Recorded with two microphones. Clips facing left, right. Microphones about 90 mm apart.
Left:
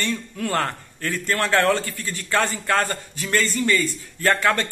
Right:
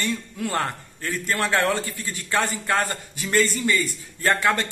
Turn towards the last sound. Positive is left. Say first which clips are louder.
# left 1 dB
turn(degrees=-15)  # may be behind; listen again after turning